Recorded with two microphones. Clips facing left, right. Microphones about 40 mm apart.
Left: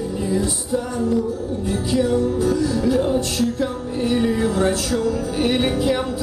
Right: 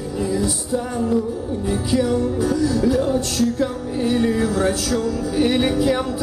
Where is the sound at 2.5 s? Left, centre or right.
Centre.